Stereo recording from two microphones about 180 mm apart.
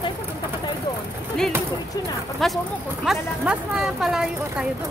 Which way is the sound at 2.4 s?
Centre (ahead or behind).